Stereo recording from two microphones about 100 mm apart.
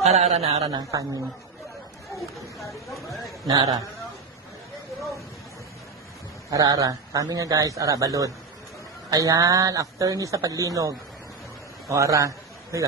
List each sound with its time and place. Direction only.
0.0 s a man's voice: 90° right
0.7 s a man's voice: 35° right (ahead or behind)
2.9 s speech: centre (ahead or behind)
3.4 s a man's voice: 35° right (ahead or behind)
6.5 s a man's voice: 35° right (ahead or behind)